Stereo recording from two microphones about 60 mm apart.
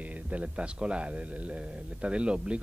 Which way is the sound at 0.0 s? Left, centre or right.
Right.